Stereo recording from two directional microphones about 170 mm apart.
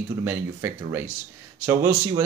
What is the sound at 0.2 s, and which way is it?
Speech, 10° right (ahead or behind).